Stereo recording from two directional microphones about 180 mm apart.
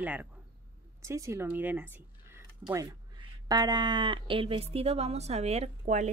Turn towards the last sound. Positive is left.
turn(degrees=-40)  # may be behind; listen again after turning